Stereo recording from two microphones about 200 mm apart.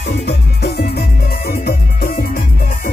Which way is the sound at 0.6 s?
55° left (ahead or behind).